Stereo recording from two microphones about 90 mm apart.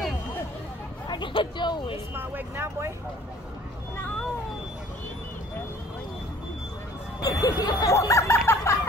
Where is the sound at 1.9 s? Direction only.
30° right (ahead or behind).